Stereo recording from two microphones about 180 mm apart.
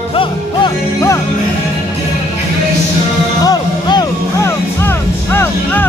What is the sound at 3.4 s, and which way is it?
Music, 20° left (ahead or behind).